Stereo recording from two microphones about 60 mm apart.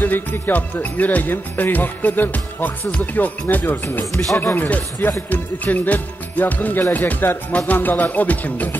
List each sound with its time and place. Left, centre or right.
0.0 s speech: left